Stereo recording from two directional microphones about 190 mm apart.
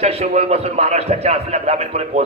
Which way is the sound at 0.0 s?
30° right (ahead or behind).